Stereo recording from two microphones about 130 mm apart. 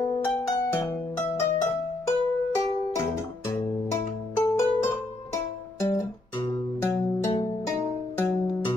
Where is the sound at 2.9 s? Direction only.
25° left (ahead or behind).